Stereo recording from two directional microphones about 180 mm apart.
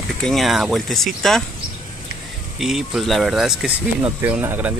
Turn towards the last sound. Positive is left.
turn(degrees=-10)  # may be behind; listen again after turning